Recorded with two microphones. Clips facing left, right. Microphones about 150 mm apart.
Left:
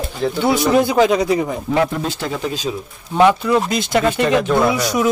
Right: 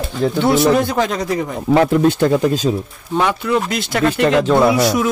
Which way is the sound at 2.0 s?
45° right (ahead or behind).